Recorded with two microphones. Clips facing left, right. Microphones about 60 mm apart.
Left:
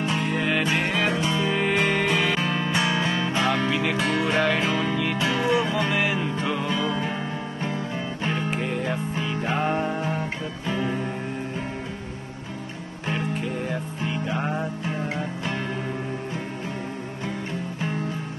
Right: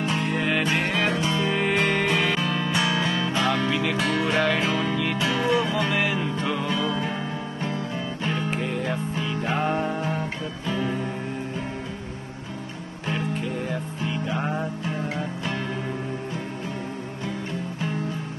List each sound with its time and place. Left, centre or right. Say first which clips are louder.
0.0 s music: even; centre
2.4 s music: even; left
8.2 s music: left 1 dB; left
8.5 s music: even; centre
9.7 s music: even; centre
14.4 s music: even; centre